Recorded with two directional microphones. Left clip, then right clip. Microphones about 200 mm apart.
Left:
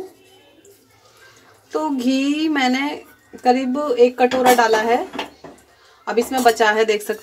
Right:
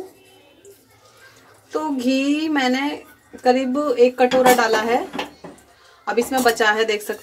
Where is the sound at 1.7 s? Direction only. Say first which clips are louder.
Left 1 dB; 35° left (ahead or behind); by 4.9 s 15° left (ahead or behind).